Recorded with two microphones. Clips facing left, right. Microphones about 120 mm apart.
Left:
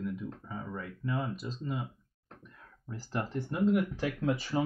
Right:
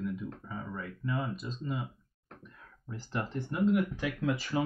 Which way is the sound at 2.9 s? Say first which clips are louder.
Left 1 dB; 45° left (ahead or behind).